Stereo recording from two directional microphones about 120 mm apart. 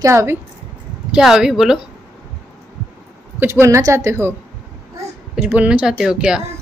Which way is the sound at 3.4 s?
20° right (ahead or behind).